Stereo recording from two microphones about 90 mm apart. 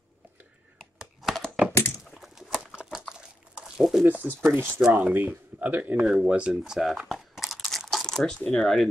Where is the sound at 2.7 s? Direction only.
10° right (ahead or behind).